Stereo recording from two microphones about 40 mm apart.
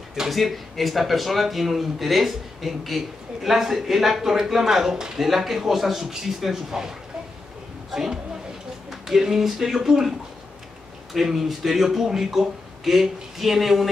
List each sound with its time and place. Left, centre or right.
0.1 s speech: centre
11.1 s speech: centre